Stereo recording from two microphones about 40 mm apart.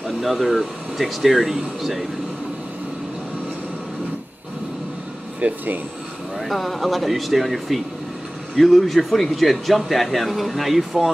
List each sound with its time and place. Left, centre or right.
0.0 s speech: centre
5.4 s speech: right
6.3 s speech: centre